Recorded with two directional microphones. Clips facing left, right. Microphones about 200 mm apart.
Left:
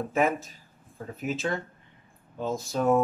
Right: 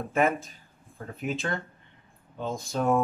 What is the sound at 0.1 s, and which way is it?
Speech, centre (ahead or behind).